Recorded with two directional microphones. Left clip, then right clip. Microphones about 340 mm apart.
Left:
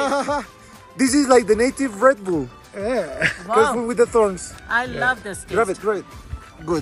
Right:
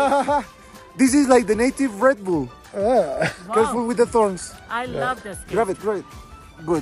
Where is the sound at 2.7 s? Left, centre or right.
Centre.